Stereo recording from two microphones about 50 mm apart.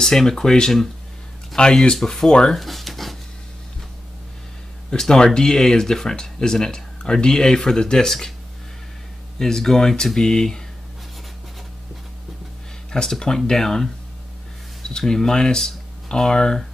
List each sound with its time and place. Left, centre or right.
0.0 s speech: centre
2.6 s pant: centre
4.9 s speech: centre
9.4 s speech: centre
12.9 s speech: centre